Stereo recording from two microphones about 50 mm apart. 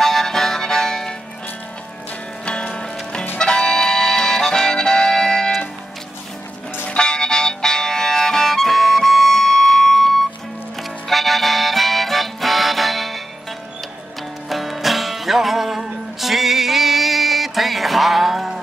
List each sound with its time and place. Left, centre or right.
0.0 s music: centre
2.4 s music: centre
3.3 s accordion: centre
6.9 s music: centre
14.5 s music: centre